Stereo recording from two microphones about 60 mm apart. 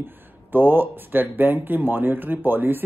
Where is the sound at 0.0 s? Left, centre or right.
Right.